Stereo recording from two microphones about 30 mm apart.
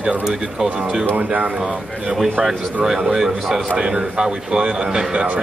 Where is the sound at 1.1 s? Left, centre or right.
Right.